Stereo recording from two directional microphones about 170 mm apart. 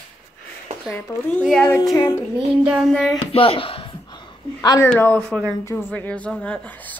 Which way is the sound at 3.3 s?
35° left (ahead or behind).